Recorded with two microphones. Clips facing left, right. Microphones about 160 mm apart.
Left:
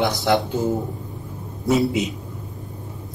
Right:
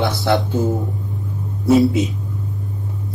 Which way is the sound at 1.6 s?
20° left (ahead or behind).